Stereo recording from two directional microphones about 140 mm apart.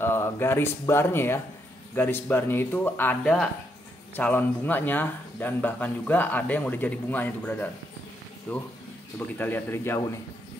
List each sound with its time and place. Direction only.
0.0 s speech: 15° left (ahead or behind)